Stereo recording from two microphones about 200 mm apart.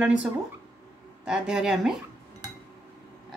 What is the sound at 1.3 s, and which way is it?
Speech, 5° right (ahead or behind).